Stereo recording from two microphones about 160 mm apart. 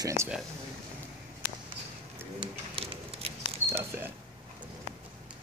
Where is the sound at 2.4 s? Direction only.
35° right (ahead or behind).